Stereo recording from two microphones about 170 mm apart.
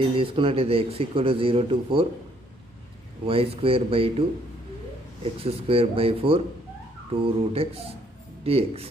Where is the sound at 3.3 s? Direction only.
35° right (ahead or behind).